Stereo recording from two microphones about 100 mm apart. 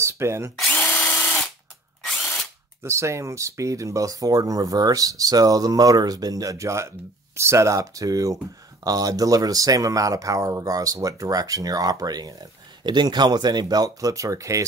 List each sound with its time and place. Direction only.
0.0 s drill: 25° right (ahead or behind)
0.7 s drill: 15° left (ahead or behind)
2.8 s speech: 30° right (ahead or behind)